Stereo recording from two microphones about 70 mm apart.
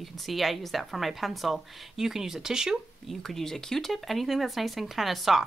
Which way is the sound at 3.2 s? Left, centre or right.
Centre.